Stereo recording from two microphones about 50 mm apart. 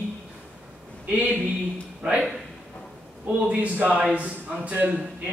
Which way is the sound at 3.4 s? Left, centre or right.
Right.